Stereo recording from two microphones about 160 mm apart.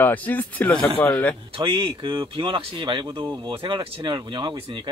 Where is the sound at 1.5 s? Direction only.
35° right (ahead or behind).